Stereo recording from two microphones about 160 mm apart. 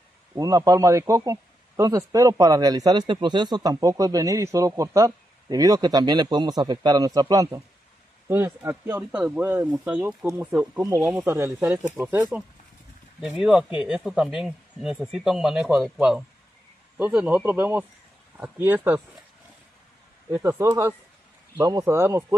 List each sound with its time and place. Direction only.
0.3 s speech: 20° right (ahead or behind)
11.0 s speech: 5° right (ahead or behind)
11.2 s speech: 15° right (ahead or behind)
20.2 s speech: 15° right (ahead or behind)